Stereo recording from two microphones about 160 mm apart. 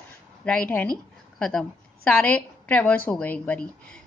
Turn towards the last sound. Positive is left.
turn(degrees=10)  # may be behind; listen again after turning